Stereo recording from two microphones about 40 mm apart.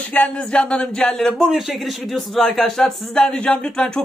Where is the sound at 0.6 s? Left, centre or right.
Left.